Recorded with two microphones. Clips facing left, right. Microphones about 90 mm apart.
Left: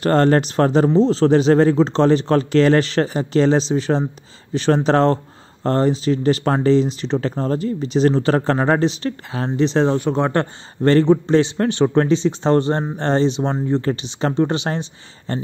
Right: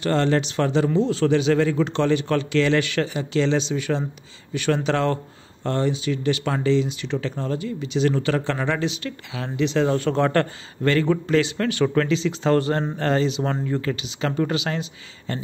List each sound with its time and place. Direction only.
0.0 s speech: 45° left (ahead or behind)
9.9 s a man's voice: 15° left (ahead or behind)
10.8 s a man's voice: 35° left (ahead or behind)